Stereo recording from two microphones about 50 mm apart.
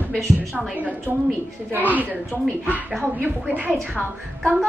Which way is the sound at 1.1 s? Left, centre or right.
Right.